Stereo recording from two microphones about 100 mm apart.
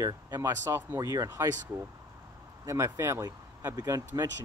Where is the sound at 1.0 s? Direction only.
35° right (ahead or behind).